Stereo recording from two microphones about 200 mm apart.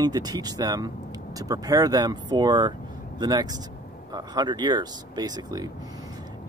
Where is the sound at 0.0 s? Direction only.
20° right (ahead or behind).